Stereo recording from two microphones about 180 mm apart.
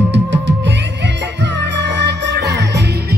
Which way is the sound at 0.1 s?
75° right (ahead or behind).